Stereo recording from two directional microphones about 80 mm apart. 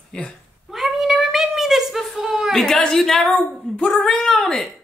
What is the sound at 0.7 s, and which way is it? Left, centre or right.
Cat, centre.